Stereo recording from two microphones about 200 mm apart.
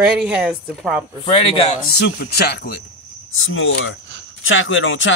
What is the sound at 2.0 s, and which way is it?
Speech, 55° left (ahead or behind).